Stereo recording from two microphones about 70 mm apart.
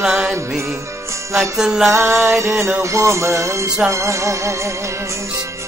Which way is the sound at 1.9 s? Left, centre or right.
Right.